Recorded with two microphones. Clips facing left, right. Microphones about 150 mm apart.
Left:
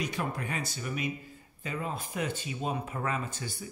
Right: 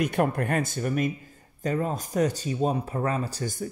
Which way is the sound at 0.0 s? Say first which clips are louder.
Right 9 dB; 55° right (ahead or behind).